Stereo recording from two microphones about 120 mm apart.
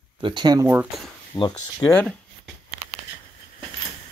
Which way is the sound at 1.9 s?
15° left (ahead or behind).